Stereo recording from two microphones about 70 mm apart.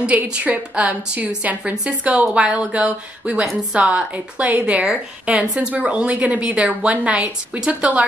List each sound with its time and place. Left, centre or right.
0.1 s a woman's voice: right